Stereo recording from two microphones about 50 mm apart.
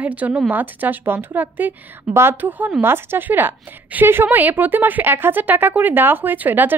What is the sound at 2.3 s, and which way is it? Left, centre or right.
Speech, right.